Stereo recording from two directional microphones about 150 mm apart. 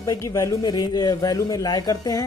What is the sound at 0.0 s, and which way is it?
Speech, 25° left (ahead or behind).